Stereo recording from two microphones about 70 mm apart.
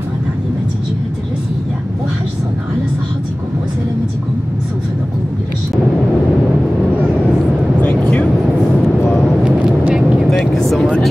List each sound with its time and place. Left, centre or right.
7.8 s vehicle: centre
9.4 s vehicle: centre
10.4 s vehicle: centre